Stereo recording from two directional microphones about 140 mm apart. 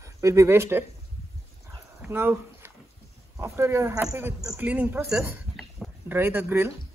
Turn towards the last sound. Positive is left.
turn(degrees=-15)  # may be behind; listen again after turning